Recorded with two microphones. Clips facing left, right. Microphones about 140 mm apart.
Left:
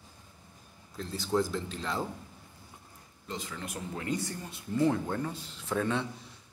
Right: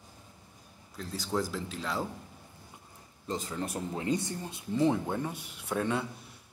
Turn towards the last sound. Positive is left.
turn(degrees=-10)  # may be behind; listen again after turning